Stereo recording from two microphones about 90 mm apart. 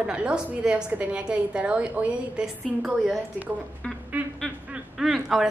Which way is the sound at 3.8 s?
15° left (ahead or behind).